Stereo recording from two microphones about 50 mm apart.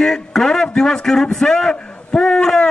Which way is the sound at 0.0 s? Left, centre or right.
Centre.